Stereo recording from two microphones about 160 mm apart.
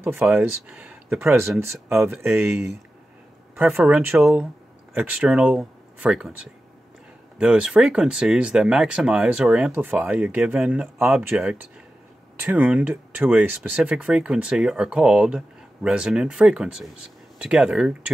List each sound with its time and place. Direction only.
0.0 s speech: 10° right (ahead or behind)
7.3 s speech: 5° right (ahead or behind)